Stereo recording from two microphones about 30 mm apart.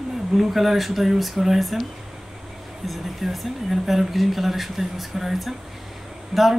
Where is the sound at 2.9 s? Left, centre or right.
Centre.